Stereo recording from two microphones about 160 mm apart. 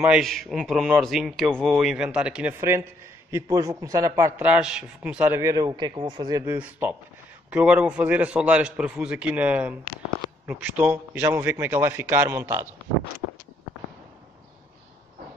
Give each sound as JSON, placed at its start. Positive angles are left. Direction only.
{"t": 0.0, "sound": "a man's voice", "side_deg": 0}
{"t": 3.3, "sound": "a man's voice", "side_deg": -20}
{"t": 6.4, "sound": "a man's voice", "side_deg": -15}